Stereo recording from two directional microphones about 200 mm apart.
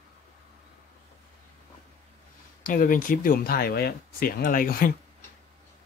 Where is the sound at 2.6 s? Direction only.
45° left (ahead or behind).